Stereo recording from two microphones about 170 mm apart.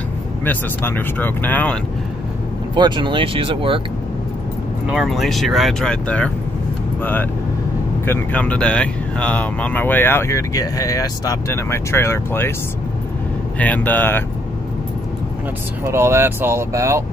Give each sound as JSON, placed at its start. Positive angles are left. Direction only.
{"t": 0.5, "sound": "speech", "side_deg": 10}
{"t": 2.7, "sound": "speech", "side_deg": -30}
{"t": 4.8, "sound": "speech", "side_deg": 0}
{"t": 13.6, "sound": "speech", "side_deg": 10}
{"t": 15.8, "sound": "speech", "side_deg": -15}